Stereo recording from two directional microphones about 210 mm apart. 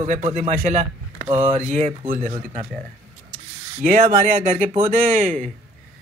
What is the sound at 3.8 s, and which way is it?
Speech, 35° right (ahead or behind).